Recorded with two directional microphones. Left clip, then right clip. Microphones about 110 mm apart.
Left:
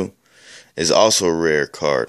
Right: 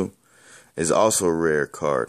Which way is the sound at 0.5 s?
20° right (ahead or behind).